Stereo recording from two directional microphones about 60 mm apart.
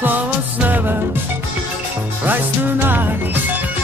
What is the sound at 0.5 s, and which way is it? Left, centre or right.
Music, right.